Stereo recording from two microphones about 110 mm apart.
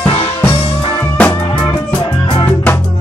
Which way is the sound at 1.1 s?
15° left (ahead or behind).